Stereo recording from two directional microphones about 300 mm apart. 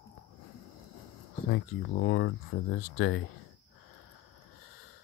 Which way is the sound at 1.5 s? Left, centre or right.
Left.